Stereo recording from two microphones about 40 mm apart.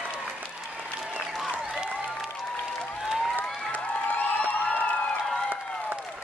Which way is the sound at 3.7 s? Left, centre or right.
Left.